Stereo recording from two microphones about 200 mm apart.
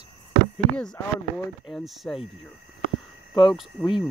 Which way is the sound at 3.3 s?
20° left (ahead or behind).